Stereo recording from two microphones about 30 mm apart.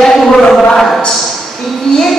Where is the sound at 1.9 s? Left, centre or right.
Left.